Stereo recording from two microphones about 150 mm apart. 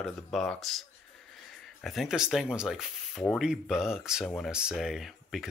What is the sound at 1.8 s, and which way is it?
Speech, centre (ahead or behind).